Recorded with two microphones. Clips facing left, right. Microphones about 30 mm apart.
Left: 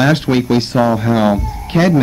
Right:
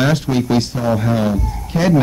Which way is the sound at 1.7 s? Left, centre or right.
Left.